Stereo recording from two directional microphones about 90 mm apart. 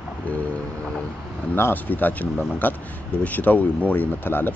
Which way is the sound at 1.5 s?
20° left (ahead or behind).